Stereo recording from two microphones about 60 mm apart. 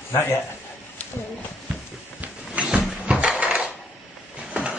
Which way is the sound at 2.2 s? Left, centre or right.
Right.